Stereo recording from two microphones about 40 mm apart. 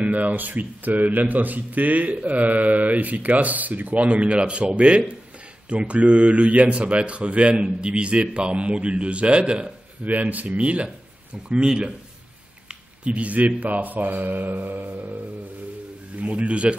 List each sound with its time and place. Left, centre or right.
0.0 s a man's voice: right
10.0 s a man's voice: right
12.6 s a sound: right
13.6 s speech: right
16.2 s a man's voice: right